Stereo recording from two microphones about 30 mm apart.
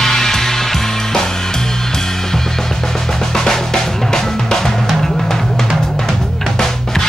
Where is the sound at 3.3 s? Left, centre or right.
Centre.